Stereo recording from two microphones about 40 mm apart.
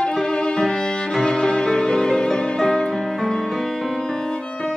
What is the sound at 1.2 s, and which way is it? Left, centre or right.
Music, centre.